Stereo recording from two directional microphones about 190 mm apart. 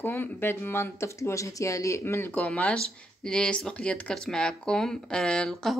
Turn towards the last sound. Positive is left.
turn(degrees=5)  # may be behind; listen again after turning